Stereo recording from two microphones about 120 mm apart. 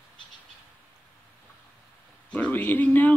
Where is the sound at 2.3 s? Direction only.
15° left (ahead or behind).